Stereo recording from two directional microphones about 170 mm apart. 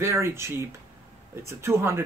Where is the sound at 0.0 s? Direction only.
15° right (ahead or behind).